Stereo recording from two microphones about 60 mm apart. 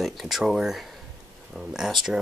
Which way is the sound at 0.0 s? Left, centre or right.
Centre.